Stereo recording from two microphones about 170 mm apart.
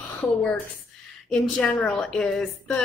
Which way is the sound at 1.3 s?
5° left (ahead or behind).